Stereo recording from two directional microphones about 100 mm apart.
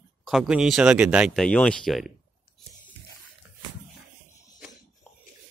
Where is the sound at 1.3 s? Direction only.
10° left (ahead or behind).